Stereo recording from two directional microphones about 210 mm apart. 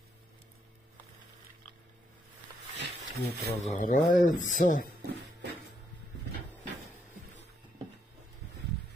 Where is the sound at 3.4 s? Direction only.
40° left (ahead or behind).